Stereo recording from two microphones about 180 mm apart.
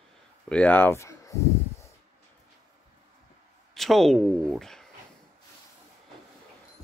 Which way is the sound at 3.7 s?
Centre (ahead or behind).